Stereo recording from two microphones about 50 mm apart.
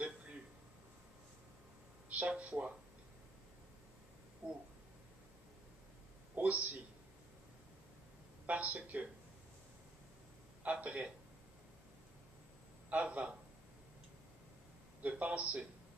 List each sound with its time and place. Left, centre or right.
2.0 s speech: right
4.4 s a sound: right
6.3 s a sound: right
8.5 s speech: right
10.6 s a man's voice: right
12.9 s a man's voice: right
15.0 s a man's voice: right